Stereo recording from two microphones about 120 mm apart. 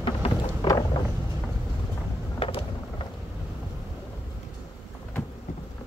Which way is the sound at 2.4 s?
50° left (ahead or behind).